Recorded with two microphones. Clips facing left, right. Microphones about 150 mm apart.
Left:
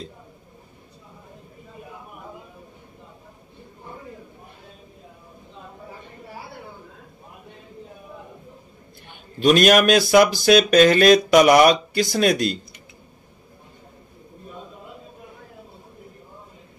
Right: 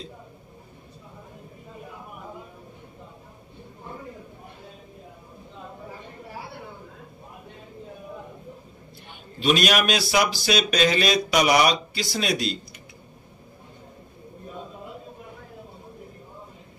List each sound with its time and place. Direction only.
9.4 s speech: 50° left (ahead or behind)